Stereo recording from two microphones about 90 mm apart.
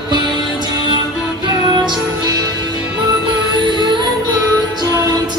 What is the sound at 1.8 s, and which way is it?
Music, 50° right (ahead or behind).